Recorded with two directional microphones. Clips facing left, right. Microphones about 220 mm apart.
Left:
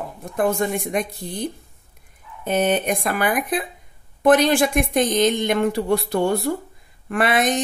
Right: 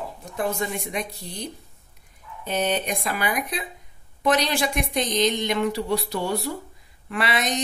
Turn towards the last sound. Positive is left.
turn(degrees=50)  # may be behind; listen again after turning